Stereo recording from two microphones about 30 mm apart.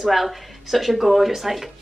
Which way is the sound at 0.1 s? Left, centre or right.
Centre.